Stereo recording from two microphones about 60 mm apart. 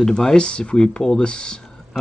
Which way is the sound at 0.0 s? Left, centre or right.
Centre.